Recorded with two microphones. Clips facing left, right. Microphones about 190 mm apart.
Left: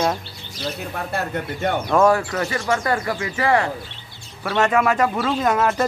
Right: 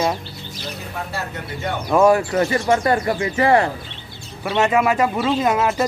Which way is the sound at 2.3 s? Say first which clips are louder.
Right 5 dB; 30° right (ahead or behind).